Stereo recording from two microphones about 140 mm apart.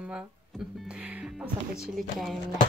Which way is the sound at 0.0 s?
5° right (ahead or behind).